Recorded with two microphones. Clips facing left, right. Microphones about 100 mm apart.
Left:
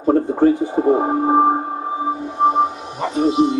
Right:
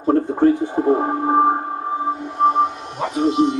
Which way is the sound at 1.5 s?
5° left (ahead or behind).